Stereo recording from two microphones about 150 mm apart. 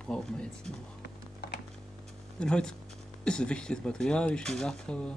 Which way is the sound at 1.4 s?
90° left.